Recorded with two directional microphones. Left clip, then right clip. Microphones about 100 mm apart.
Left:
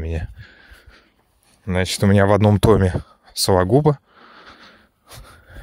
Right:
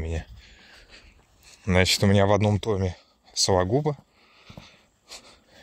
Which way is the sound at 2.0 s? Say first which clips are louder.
Left 5 dB; 75° left (ahead or behind).